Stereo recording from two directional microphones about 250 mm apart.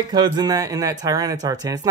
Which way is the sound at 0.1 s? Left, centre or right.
Centre.